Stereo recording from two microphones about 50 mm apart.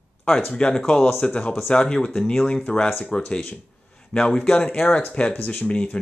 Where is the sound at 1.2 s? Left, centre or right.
Left.